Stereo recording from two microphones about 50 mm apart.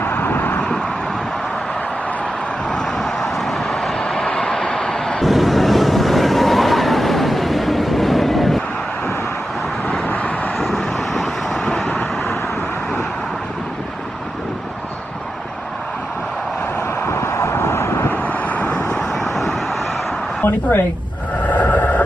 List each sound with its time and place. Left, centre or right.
0.0 s vehicle: left
2.7 s vehicle: centre
3.6 s vehicle: centre
5.2 s vehicle: centre
10.0 s vehicle: left
10.6 s vehicle: centre
17.0 s vehicle: left
18.1 s vehicle: left
19.1 s vehicle: centre
21.4 s radio: left